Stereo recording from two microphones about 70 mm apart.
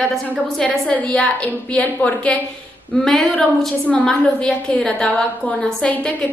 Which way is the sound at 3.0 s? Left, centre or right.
Centre.